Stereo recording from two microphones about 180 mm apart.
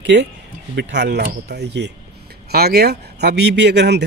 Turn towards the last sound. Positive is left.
turn(degrees=-70)  # may be behind; listen again after turning